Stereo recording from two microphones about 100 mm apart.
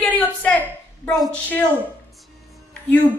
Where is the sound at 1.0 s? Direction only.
Centre (ahead or behind).